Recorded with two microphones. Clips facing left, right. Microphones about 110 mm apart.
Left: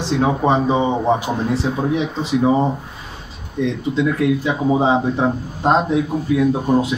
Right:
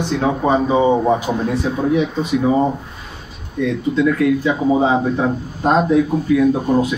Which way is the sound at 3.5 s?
25° left (ahead or behind).